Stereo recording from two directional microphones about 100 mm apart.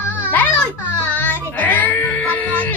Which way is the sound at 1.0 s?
15° left (ahead or behind).